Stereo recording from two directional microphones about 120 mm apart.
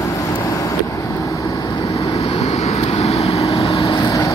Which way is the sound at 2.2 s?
55° left (ahead or behind).